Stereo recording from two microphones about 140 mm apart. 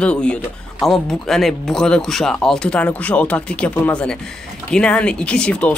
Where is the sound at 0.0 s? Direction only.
5° left (ahead or behind).